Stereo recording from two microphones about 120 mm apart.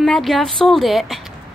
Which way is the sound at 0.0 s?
Centre (ahead or behind).